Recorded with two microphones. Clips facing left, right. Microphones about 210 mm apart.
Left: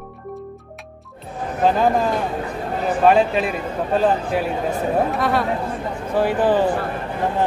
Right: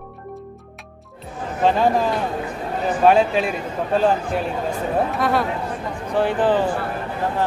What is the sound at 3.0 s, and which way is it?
A woman's voice, centre (ahead or behind).